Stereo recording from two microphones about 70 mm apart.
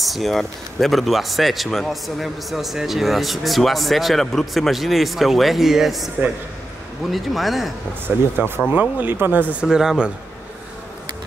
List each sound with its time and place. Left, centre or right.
0.0 s a man's voice: centre
7.1 s a man's voice: centre
8.1 s speech: right
9.6 s speech: centre